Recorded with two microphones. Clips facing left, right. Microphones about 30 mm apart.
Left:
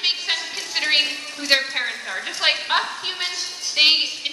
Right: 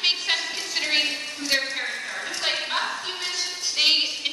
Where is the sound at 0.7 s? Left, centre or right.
Left.